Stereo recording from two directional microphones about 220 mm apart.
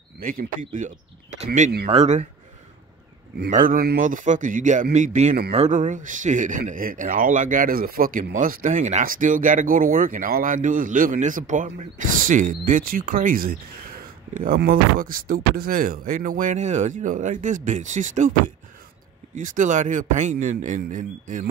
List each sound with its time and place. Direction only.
0.2 s speech: 40° right (ahead or behind)
3.4 s speech: 35° right (ahead or behind)
19.3 s speech: 35° right (ahead or behind)